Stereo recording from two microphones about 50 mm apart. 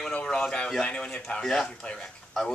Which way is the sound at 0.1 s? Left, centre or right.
Left.